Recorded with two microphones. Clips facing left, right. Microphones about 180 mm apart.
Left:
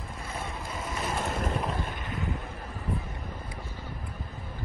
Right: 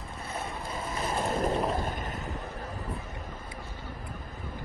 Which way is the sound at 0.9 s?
35° right (ahead or behind).